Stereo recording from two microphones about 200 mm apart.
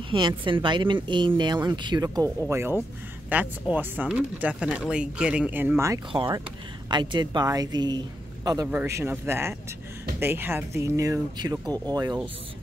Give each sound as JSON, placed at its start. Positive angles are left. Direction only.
{"t": 0.1, "sound": "speech", "side_deg": -20}